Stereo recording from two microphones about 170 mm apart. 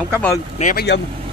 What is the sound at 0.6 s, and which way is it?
Speech, 50° left (ahead or behind).